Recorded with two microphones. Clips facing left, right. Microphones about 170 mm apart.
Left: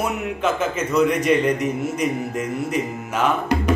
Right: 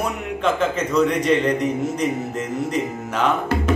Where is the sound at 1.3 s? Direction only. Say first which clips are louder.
Even; 10° left (ahead or behind).